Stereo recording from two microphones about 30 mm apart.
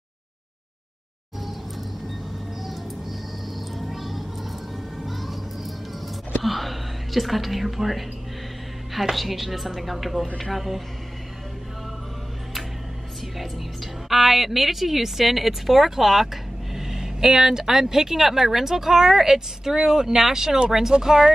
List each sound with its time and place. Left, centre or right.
2.6 s music: centre
6.4 s a sound: centre
9.1 s speech: centre
14.0 s speech: centre